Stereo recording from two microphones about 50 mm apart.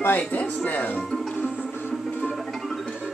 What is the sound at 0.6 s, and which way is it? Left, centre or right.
Speech, left.